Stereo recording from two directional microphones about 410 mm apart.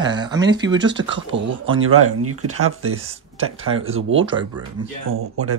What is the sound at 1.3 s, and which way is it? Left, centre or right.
Speech, right.